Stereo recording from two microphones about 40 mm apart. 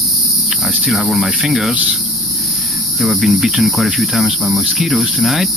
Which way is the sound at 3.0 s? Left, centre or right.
Centre.